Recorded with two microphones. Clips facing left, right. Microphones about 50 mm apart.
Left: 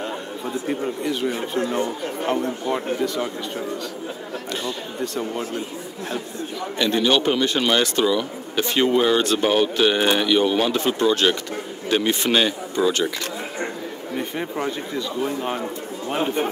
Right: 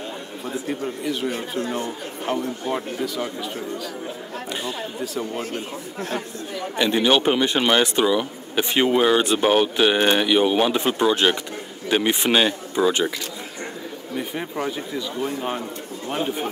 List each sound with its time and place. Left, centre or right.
1.7 s speech: centre
2.7 s speech: centre
5.0 s speech: centre
6.8 s speech: centre
14.1 s speech: centre